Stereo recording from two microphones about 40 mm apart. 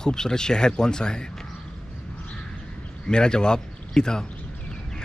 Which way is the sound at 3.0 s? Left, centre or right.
Centre.